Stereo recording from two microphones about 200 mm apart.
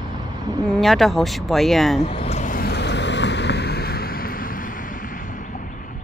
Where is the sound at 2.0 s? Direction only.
30° left (ahead or behind); by 4.3 s 50° left (ahead or behind).